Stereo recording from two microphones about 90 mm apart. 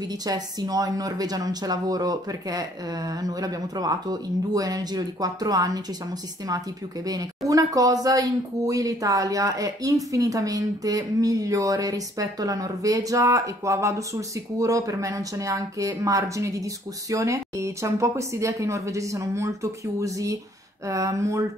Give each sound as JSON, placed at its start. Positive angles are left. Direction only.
{"t": 0.2, "sound": "speech", "side_deg": -45}
{"t": 7.1, "sound": "speech", "side_deg": -40}